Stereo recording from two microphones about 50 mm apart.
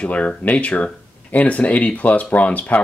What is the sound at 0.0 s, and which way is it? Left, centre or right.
Speech, left.